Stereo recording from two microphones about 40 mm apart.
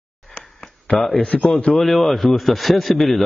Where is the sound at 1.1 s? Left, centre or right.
Left.